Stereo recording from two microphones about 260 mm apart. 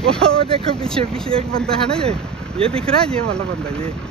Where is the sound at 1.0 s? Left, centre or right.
Right.